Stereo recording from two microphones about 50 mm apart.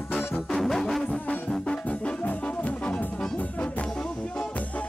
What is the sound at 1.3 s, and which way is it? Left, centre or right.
Music, left.